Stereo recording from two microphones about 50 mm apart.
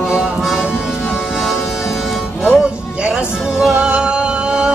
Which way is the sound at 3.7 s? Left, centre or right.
Right.